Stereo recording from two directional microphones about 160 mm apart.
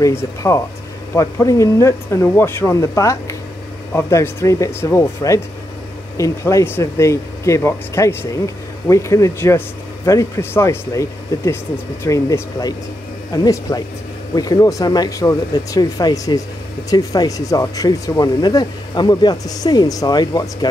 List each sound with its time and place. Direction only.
0.0 s speech: 15° left (ahead or behind)